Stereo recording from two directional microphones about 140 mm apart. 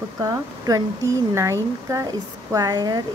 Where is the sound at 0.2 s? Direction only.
25° right (ahead or behind).